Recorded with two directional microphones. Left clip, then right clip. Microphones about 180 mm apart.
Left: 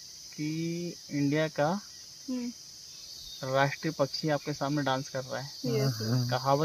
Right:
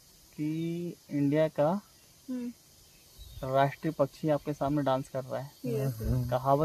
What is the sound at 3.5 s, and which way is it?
Speech, 10° right (ahead or behind).